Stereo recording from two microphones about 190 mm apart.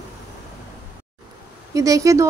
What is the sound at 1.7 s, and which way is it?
Speech, 15° right (ahead or behind).